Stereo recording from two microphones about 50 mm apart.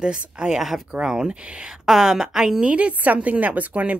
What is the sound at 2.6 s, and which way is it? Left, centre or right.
Speech, right.